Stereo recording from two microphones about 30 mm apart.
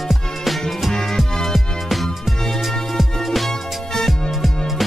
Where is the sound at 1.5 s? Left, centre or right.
Centre.